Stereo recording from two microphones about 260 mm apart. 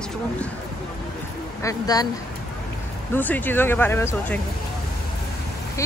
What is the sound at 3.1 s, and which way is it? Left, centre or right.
Speech, centre.